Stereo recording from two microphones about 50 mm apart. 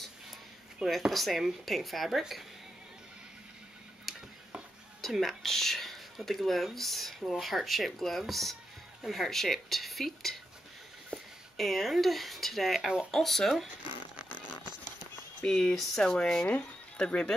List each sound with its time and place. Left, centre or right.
0.8 s speech: centre
5.0 s speech: centre
11.1 s a sound: centre
11.5 s speech: centre
15.4 s speech: centre